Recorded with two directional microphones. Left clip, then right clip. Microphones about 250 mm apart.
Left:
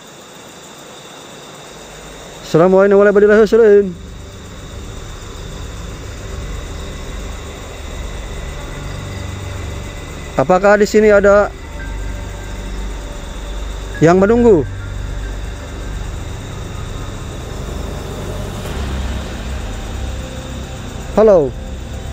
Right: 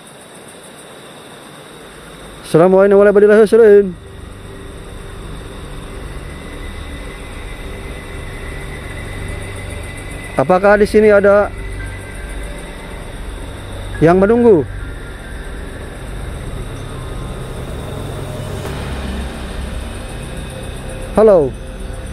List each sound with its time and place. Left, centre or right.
2.5 s speech: centre
10.3 s speech: centre
14.0 s speech: centre
21.1 s speech: centre